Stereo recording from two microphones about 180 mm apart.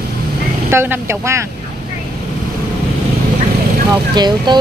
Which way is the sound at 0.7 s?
15° right (ahead or behind).